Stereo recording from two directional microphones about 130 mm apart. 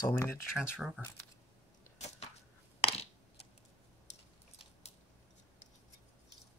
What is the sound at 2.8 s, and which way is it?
Crushing, 50° left (ahead or behind).